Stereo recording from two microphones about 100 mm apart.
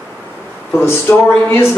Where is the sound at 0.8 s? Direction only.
25° left (ahead or behind).